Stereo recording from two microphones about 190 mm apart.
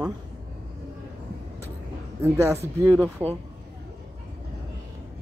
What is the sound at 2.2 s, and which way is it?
Speech, 15° right (ahead or behind).